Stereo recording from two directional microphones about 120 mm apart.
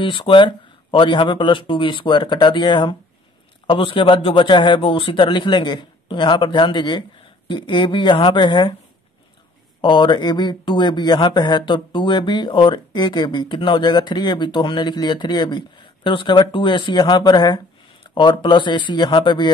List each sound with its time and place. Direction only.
0.0 s speech: 45° left (ahead or behind)
9.8 s speech: 40° left (ahead or behind)